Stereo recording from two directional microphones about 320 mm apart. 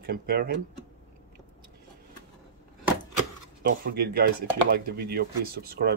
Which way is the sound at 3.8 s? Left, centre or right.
Right.